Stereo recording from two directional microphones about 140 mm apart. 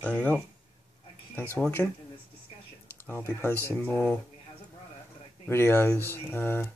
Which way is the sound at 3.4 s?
15° left (ahead or behind).